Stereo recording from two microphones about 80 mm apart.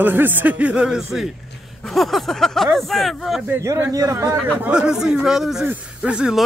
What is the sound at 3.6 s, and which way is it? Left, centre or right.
Speech, right.